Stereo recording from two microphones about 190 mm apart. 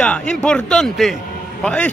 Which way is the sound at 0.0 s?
5° left (ahead or behind).